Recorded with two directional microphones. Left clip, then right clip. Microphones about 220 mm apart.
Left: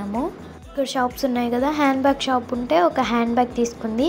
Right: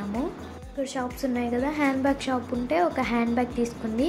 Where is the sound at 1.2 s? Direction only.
15° left (ahead or behind).